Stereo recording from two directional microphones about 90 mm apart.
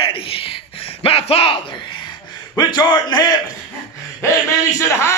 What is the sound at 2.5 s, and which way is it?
Speech, 45° left (ahead or behind).